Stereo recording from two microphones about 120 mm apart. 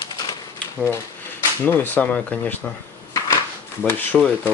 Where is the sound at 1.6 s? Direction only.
15° left (ahead or behind).